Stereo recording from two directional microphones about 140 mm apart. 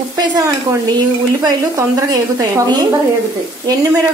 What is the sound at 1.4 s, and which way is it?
A woman's voice, 25° right (ahead or behind).